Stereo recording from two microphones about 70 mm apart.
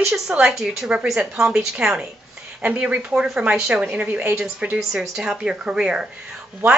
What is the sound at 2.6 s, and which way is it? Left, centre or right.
A woman's voice, right.